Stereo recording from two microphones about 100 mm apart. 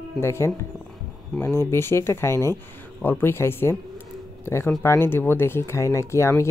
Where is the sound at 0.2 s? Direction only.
25° left (ahead or behind).